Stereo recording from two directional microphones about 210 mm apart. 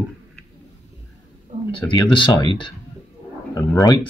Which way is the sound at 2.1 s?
25° left (ahead or behind).